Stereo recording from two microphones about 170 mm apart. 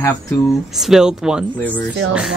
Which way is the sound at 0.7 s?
5° right (ahead or behind).